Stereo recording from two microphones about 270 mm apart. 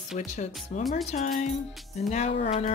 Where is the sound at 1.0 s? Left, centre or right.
Left.